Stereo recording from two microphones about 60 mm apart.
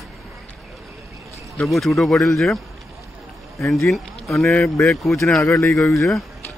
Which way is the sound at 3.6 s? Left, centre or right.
Centre.